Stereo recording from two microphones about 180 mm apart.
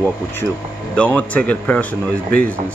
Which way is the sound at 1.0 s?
10° left (ahead or behind).